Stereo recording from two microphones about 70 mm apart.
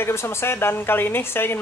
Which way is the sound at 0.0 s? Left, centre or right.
Left.